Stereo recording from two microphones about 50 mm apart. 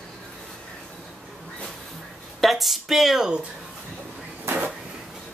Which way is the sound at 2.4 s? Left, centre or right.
Centre.